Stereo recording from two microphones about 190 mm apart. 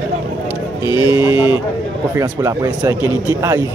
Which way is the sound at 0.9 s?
15° right (ahead or behind).